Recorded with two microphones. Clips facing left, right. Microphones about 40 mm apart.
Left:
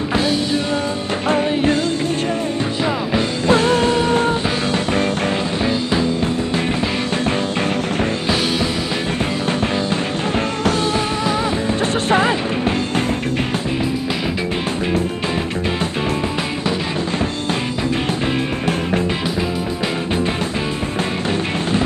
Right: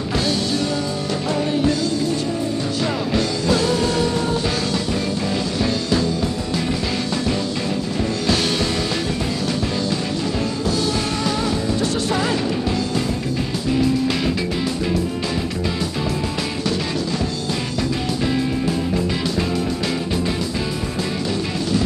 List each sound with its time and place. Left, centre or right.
0.1 s music: left
1.3 s music: left
3.4 s music: left
5.6 s music: left
11.8 s music: left